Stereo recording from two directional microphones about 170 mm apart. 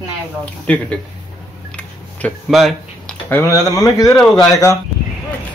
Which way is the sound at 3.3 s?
20° left (ahead or behind).